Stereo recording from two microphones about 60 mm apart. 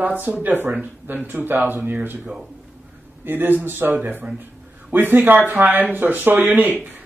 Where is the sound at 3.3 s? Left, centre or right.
Right.